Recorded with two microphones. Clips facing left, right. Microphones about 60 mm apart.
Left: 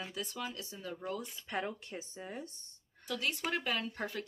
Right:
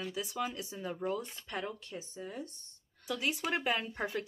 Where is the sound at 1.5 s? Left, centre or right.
Centre.